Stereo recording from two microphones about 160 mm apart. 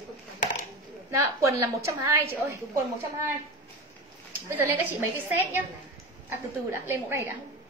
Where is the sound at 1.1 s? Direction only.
20° right (ahead or behind).